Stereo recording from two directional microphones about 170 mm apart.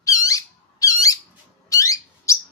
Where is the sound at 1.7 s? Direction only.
20° left (ahead or behind).